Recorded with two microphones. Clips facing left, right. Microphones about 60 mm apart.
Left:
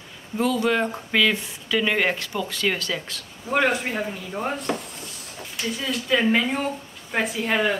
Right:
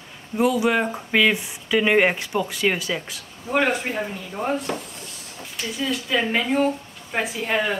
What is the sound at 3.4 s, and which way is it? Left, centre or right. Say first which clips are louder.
Speech: even; centre.